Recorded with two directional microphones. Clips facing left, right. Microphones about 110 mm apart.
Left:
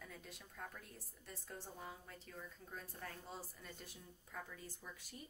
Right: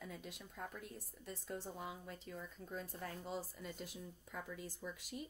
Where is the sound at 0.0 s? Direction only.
20° right (ahead or behind).